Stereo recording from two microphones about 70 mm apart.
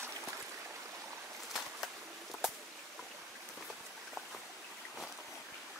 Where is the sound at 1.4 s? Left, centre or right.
Centre.